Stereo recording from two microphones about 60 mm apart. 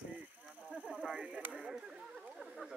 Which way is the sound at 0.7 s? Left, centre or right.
Right.